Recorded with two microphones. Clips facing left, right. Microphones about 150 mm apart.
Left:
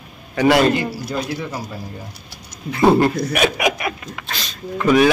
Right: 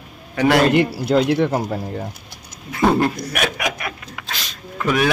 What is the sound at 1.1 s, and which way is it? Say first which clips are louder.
Speech: right 9 dB; 65° right (ahead or behind).